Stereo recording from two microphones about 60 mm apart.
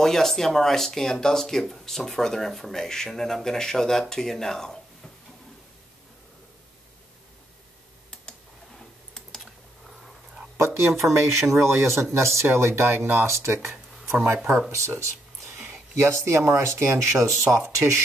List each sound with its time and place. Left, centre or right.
0.0 s speech: centre
8.1 s computer keyboard: centre
10.6 s speech: right
11.0 s speech: centre
11.5 s speech: right
14.2 s speech: right
14.7 s speech: right